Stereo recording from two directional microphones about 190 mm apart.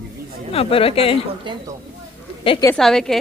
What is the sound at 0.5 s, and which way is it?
Speech, 30° left (ahead or behind).